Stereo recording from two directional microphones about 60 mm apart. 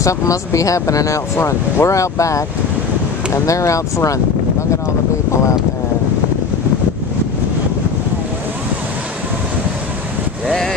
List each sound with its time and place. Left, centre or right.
0.0 s speech: left
3.4 s speech: left